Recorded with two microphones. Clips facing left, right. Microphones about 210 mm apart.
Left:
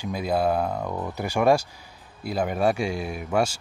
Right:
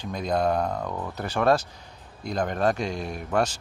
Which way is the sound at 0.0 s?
5° left (ahead or behind).